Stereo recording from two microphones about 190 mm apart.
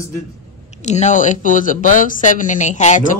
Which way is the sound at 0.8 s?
40° left (ahead or behind).